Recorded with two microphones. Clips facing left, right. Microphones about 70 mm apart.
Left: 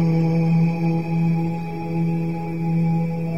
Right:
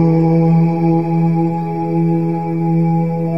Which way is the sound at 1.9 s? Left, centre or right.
Right.